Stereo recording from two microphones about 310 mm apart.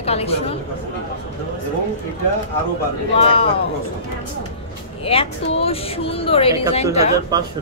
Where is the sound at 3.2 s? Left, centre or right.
Centre.